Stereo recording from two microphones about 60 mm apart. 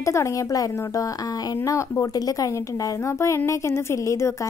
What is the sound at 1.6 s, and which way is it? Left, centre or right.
Speech, left.